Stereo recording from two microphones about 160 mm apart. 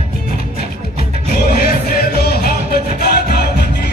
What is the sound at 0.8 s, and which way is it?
Music, 75° left (ahead or behind).